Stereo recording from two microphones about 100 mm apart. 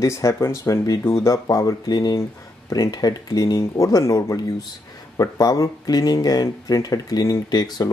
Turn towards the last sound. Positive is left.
turn(degrees=40)  # may be behind; listen again after turning